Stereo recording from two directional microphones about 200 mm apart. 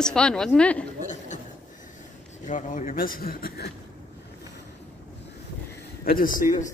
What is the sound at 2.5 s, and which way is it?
A man's voice, 40° left (ahead or behind).